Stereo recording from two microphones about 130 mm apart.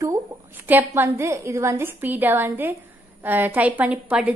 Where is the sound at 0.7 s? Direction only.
15° right (ahead or behind).